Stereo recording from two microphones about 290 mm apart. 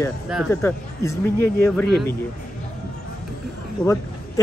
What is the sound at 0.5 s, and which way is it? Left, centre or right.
Speech, centre.